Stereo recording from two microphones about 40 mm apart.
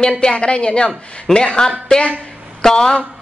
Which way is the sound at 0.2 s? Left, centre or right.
Left.